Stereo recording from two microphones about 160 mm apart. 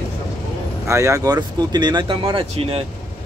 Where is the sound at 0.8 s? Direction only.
20° right (ahead or behind).